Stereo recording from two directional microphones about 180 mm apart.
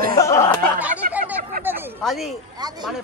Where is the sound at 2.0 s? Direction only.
Centre (ahead or behind).